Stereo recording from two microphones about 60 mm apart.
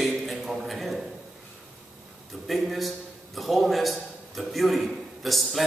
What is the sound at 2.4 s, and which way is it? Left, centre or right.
A man's voice, centre.